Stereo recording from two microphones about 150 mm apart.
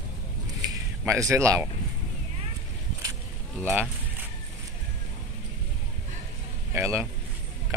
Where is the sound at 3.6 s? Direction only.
15° right (ahead or behind).